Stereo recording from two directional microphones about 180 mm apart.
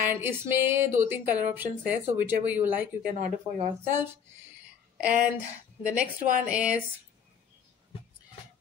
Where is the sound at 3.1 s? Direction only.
40° right (ahead or behind).